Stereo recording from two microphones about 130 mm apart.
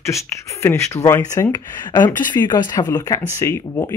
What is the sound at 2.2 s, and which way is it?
Speech, 35° left (ahead or behind).